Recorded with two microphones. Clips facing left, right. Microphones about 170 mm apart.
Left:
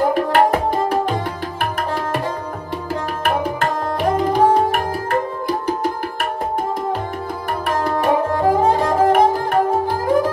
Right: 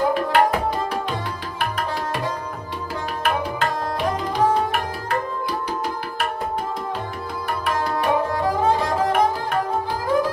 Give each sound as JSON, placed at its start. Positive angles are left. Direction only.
{"t": 0.1, "sound": "tabla", "side_deg": 45}
{"t": 4.2, "sound": "tabla", "side_deg": 50}
{"t": 7.6, "sound": "tabla", "side_deg": 45}